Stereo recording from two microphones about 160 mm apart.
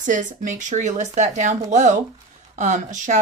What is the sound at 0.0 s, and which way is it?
Speech, 55° right (ahead or behind).